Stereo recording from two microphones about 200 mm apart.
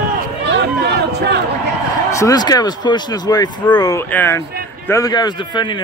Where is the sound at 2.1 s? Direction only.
15° left (ahead or behind).